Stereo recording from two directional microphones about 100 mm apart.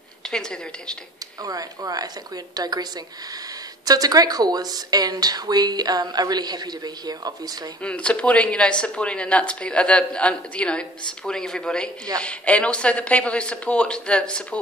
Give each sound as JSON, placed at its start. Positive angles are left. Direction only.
{"t": 0.3, "sound": "speech", "side_deg": 5}
{"t": 1.4, "sound": "speech", "side_deg": -35}
{"t": 7.8, "sound": "speech", "side_deg": 10}